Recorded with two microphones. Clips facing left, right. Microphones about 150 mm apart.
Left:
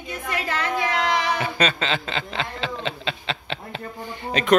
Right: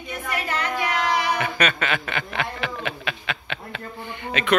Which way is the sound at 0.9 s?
30° left (ahead or behind).